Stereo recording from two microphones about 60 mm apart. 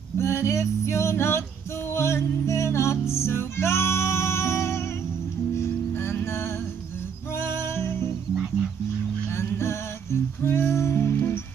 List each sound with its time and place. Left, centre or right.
0.2 s music: left
9.3 s music: left